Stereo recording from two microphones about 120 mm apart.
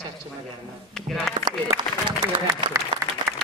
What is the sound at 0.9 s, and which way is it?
Speech, 5° left (ahead or behind).